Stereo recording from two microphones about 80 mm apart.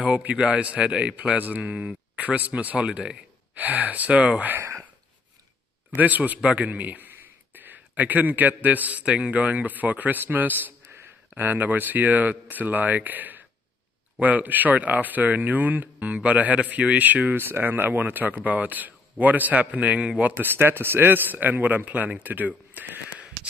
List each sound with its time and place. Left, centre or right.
0.0 s a man's voice: centre
4.6 s a sound: right
5.9 s a man's voice: right